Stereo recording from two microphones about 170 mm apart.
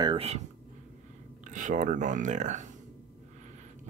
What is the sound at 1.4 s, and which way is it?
Speech, 50° right (ahead or behind).